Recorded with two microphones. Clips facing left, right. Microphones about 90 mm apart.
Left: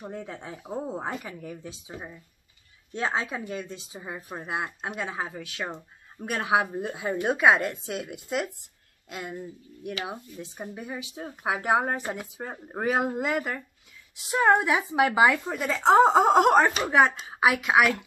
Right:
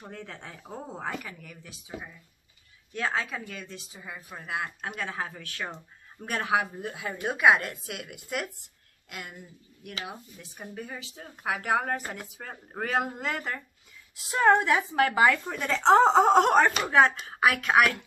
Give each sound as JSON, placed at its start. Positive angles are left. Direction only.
{"t": 0.0, "sound": "speech", "side_deg": 15}
{"t": 1.0, "sound": "speech", "side_deg": 25}